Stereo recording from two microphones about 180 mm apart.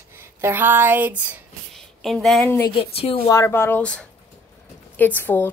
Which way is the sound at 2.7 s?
30° left (ahead or behind).